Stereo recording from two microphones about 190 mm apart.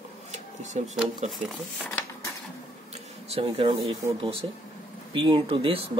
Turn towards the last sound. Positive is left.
turn(degrees=-30)  # may be behind; listen again after turning